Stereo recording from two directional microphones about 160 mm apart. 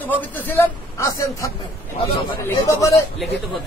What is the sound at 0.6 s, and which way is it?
Speech, 20° left (ahead or behind).